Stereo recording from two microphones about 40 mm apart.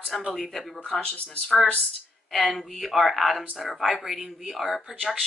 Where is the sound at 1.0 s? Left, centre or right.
Left.